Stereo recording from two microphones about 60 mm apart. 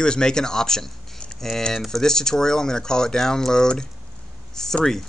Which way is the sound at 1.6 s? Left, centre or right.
Centre.